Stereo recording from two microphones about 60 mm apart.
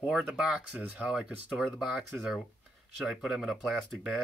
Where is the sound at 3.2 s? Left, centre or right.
Centre.